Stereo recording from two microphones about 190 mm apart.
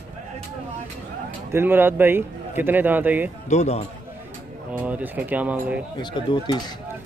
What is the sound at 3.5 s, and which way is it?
Speech, 35° left (ahead or behind).